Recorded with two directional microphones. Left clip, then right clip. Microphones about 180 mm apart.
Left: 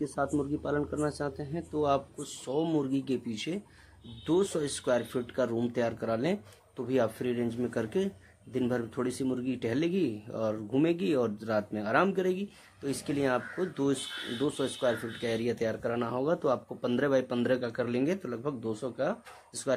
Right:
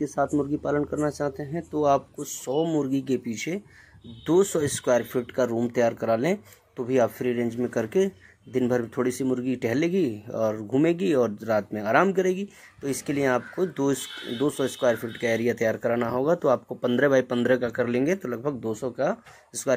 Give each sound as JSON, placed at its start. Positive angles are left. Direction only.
{"t": 0.0, "sound": "speech", "side_deg": -30}